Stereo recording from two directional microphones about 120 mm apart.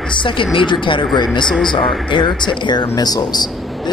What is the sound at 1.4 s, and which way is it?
Speech, 5° left (ahead or behind).